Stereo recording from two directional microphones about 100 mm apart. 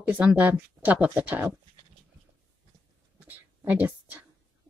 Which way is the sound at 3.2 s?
15° right (ahead or behind).